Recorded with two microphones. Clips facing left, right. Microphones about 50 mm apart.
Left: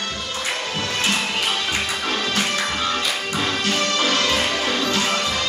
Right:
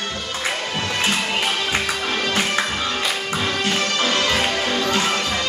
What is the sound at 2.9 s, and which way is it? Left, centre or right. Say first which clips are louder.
Music: even; centre.